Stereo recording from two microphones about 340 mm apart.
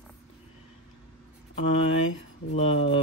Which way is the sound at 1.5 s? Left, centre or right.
Centre.